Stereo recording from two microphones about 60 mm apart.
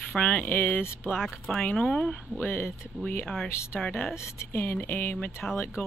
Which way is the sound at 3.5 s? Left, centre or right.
Left.